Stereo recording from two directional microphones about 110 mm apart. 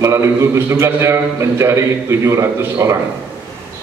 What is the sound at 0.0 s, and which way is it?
A man's voice, 25° right (ahead or behind).